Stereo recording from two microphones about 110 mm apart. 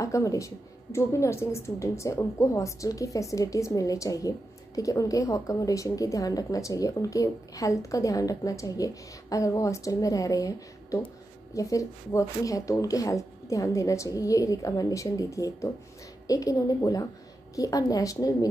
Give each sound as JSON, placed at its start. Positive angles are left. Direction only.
{"t": 0.0, "sound": "a woman's voice", "side_deg": 30}